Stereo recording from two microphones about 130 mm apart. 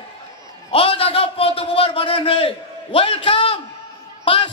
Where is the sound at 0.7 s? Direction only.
45° left (ahead or behind).